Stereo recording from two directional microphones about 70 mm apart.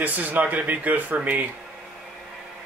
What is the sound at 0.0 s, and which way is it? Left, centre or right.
Speech, right.